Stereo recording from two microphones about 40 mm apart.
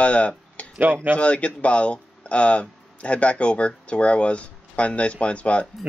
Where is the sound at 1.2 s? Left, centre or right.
Left.